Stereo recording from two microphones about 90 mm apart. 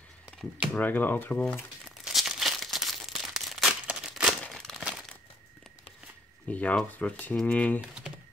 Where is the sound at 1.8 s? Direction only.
Centre (ahead or behind).